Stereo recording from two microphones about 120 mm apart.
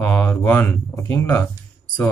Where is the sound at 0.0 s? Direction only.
20° left (ahead or behind).